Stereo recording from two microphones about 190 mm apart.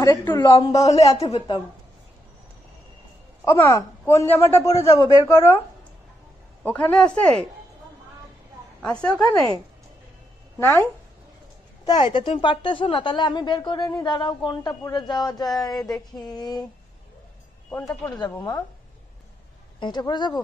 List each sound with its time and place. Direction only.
0.0 s a woman's voice: 15° left (ahead or behind)
1.1 s a woman's voice: 30° left (ahead or behind)
3.4 s speech: 15° left (ahead or behind)
6.6 s speech: 5° left (ahead or behind)
8.8 s a woman's voice: 5° left (ahead or behind)
10.6 s speech: 10° left (ahead or behind)
11.8 s a woman's voice: 20° left (ahead or behind)
17.6 s a woman's voice: 15° left (ahead or behind)
19.8 s a woman's voice: 25° left (ahead or behind)